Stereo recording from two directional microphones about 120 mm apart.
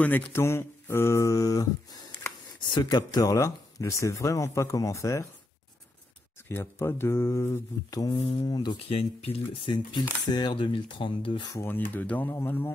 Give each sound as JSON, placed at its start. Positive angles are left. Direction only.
{"t": 0.0, "sound": "speech", "side_deg": 15}
{"t": 6.5, "sound": "speech", "side_deg": 20}
{"t": 8.2, "sound": "speech", "side_deg": 50}
{"t": 8.5, "sound": "speech", "side_deg": 40}
{"t": 8.8, "sound": "speech", "side_deg": 55}
{"t": 10.3, "sound": "speech", "side_deg": 40}
{"t": 11.4, "sound": "speech", "side_deg": 20}